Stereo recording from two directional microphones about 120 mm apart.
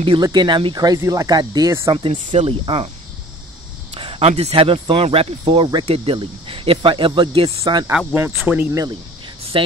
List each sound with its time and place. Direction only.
0.0 s speech: 40° right (ahead or behind)
2.1 s speech: 90° right
2.4 s speech: 50° right (ahead or behind)
3.9 s speech: 50° right (ahead or behind)
7.6 s speech: 25° right (ahead or behind)